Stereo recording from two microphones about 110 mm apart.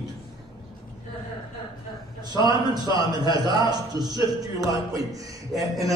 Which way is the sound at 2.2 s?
35° right (ahead or behind).